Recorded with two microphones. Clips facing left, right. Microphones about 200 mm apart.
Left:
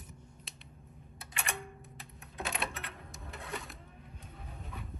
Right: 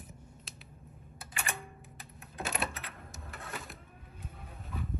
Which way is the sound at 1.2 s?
Centre (ahead or behind).